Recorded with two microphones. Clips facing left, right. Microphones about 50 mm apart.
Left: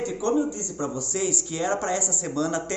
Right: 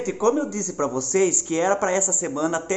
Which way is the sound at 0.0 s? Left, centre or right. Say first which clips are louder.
Right 3 dB; right.